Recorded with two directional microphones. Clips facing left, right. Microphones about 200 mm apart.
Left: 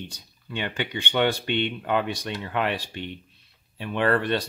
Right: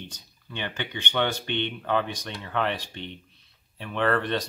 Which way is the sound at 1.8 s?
10° left (ahead or behind).